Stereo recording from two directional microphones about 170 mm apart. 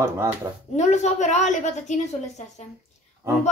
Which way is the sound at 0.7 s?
40° left (ahead or behind).